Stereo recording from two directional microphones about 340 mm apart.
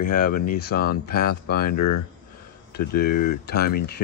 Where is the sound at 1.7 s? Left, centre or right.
Left.